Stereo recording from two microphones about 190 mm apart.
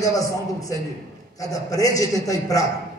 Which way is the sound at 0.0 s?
20° left (ahead or behind).